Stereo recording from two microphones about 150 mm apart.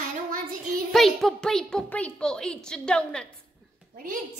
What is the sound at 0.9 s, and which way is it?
A woman's voice, centre (ahead or behind).